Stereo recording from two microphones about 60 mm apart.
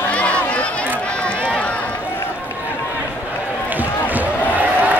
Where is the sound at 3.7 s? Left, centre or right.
Right.